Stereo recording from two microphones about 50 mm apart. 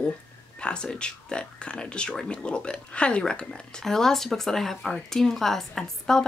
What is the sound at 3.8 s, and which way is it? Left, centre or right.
Speech, centre.